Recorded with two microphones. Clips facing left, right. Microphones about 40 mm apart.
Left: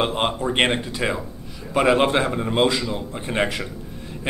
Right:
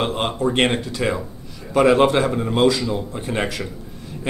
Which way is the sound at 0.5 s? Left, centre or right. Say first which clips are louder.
Right 4 dB; centre.